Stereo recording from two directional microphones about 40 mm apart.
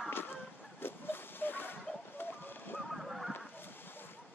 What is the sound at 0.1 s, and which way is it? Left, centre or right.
Dog, left.